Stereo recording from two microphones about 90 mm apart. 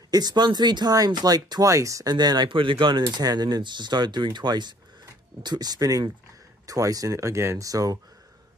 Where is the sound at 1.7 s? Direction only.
35° right (ahead or behind).